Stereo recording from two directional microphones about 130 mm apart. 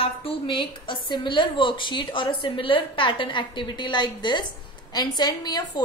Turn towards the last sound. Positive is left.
turn(degrees=30)  # may be behind; listen again after turning